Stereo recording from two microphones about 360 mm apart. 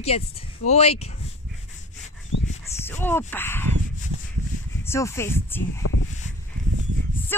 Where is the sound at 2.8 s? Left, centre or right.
Centre.